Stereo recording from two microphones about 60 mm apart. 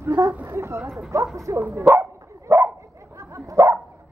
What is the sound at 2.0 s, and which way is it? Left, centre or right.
Dog, right.